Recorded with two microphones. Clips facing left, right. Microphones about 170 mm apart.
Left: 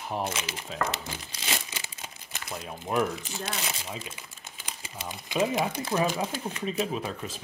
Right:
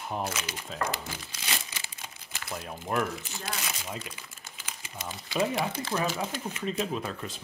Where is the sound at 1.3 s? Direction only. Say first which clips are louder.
Left 3 dB; 25° left (ahead or behind).